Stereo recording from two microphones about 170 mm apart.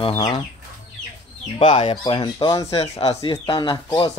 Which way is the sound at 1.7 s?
35° left (ahead or behind).